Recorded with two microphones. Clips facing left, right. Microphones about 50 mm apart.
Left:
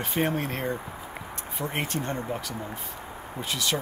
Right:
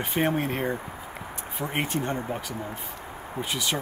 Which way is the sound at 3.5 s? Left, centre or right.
Centre.